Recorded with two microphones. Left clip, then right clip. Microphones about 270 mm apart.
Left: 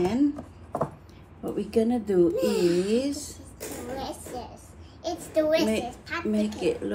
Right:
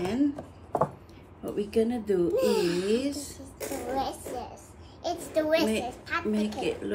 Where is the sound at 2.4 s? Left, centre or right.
Centre.